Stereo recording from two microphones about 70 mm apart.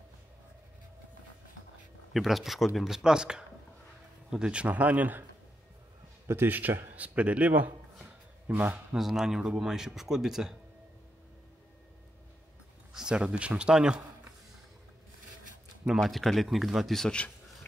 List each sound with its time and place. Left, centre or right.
2.1 s a man's voice: centre; by 5.2 s right
6.2 s a man's voice: right
8.9 s speech: centre
12.9 s speech: centre
15.9 s speech: centre